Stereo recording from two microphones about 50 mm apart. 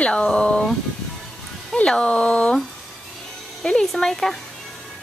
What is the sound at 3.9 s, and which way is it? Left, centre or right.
Speech, centre.